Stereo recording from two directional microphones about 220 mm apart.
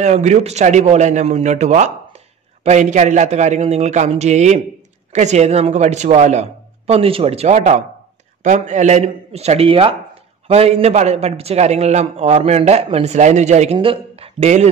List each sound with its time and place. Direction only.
0.0 s a man's voice: 30° right (ahead or behind)